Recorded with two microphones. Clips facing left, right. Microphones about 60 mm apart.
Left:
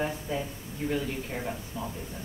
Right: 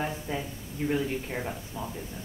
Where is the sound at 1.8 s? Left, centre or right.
Centre.